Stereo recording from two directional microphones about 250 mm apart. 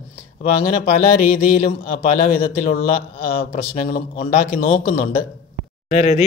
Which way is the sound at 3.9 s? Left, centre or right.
Left.